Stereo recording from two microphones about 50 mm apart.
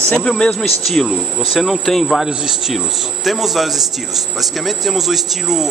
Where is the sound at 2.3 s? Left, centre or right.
Centre.